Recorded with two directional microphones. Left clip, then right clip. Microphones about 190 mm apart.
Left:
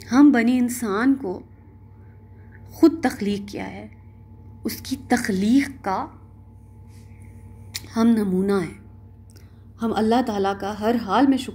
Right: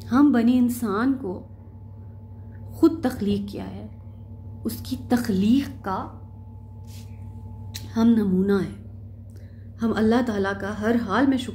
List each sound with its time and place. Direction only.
0.0 s a woman's voice: 25° left (ahead or behind)
2.8 s a woman's voice: 25° left (ahead or behind)
7.7 s a woman's voice: 30° left (ahead or behind)
9.8 s a woman's voice: 25° left (ahead or behind)